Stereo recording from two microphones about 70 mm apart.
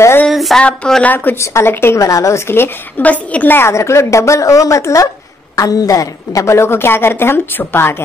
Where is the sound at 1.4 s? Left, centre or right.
Left.